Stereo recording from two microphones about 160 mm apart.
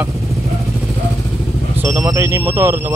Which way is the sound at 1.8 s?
20° right (ahead or behind).